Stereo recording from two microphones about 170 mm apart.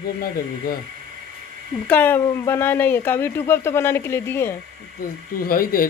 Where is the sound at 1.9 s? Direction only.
10° left (ahead or behind).